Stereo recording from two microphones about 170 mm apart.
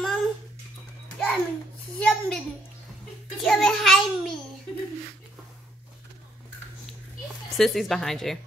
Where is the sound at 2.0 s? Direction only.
5° left (ahead or behind).